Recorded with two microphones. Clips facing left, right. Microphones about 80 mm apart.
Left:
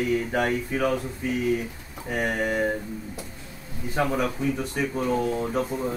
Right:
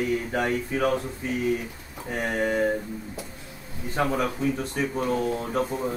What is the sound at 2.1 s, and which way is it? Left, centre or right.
Speech, centre.